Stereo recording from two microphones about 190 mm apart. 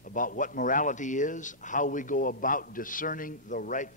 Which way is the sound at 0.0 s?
45° left (ahead or behind).